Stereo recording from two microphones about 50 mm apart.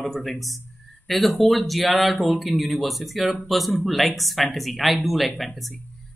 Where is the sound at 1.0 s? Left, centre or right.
Centre.